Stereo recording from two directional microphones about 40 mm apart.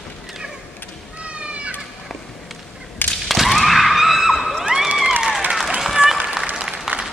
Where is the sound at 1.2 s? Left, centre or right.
Right.